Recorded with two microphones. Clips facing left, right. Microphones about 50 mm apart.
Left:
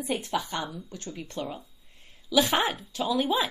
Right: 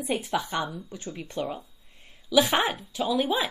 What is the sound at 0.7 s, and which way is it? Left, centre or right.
Speech, right.